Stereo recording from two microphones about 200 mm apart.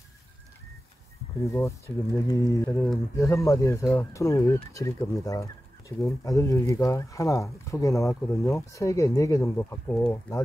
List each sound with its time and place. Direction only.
1.4 s speech: 15° left (ahead or behind)